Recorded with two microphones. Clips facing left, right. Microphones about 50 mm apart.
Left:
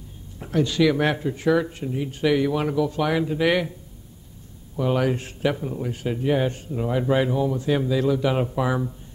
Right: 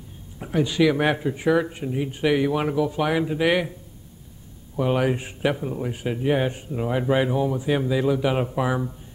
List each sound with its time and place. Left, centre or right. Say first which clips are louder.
0.4 s a man's voice: even; centre
4.7 s a man's voice: even; centre